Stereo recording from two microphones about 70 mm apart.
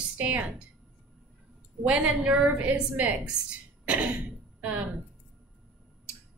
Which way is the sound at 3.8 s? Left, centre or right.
Centre.